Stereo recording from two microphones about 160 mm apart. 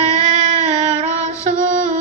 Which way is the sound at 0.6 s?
45° right (ahead or behind).